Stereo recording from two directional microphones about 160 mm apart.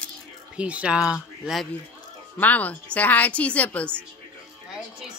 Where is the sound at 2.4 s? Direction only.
10° left (ahead or behind).